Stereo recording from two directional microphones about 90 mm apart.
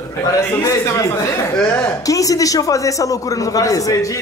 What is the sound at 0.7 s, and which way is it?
Speech, 40° left (ahead or behind).